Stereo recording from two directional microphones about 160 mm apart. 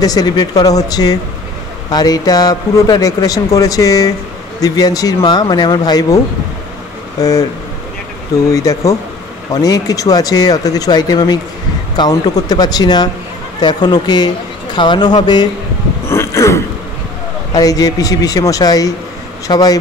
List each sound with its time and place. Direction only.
0.0 s speech: 25° left (ahead or behind)
7.2 s speech: 20° left (ahead or behind)
8.5 s speech: 20° left (ahead or behind)
16.1 s a sound: 15° left (ahead or behind)
17.6 s speech: 20° left (ahead or behind)